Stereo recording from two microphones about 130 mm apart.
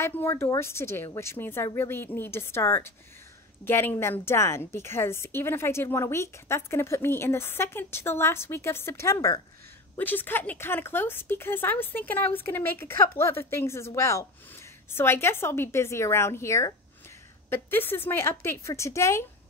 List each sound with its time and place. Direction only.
0.0 s a woman's voice: 20° left (ahead or behind)
9.9 s a woman's voice: 15° left (ahead or behind)